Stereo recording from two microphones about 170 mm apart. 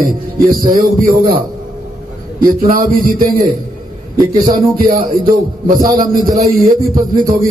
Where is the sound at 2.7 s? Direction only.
60° right (ahead or behind).